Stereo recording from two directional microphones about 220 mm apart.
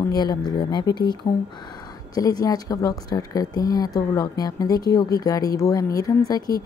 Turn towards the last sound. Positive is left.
turn(degrees=15)  # may be behind; listen again after turning